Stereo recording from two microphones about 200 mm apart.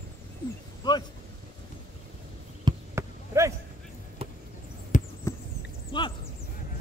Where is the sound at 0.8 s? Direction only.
20° left (ahead or behind).